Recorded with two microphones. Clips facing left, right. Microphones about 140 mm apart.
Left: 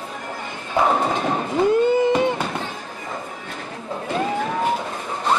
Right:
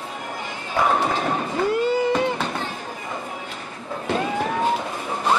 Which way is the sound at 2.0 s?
20° left (ahead or behind).